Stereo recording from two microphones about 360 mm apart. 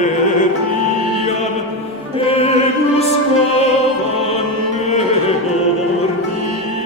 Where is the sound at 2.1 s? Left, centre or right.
Centre.